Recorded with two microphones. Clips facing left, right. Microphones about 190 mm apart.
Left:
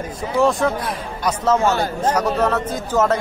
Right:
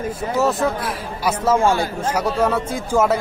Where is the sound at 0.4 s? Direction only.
5° right (ahead or behind).